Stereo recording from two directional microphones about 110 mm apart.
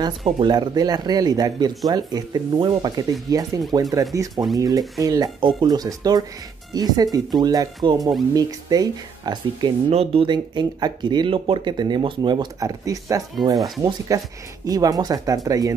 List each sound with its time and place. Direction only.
0.4 s speech: 40° right (ahead or behind)
9.8 s speech: 70° right (ahead or behind)
10.2 s speech: 45° right (ahead or behind)